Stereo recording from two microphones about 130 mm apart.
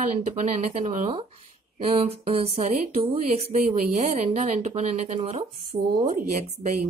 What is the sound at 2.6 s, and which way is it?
Speech, 70° right (ahead or behind).